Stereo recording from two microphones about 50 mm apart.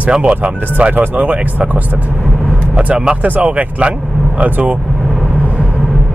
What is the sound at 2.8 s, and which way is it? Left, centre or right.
Speech, right.